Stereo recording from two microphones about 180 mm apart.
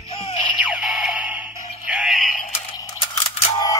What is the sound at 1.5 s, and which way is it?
Music, 45° left (ahead or behind).